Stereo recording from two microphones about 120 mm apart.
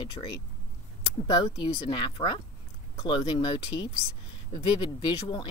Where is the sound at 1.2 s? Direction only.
35° left (ahead or behind).